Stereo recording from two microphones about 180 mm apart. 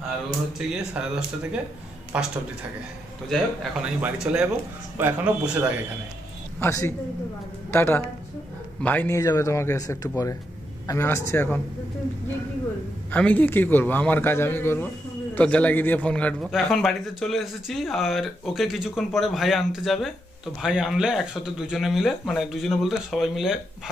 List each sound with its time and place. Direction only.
0.6 s a man's voice: 5° right (ahead or behind)
3.8 s a man's voice: 5° right (ahead or behind)
6.6 s a man's voice: 20° left (ahead or behind)
13.1 s a man's voice: 10° left (ahead or behind)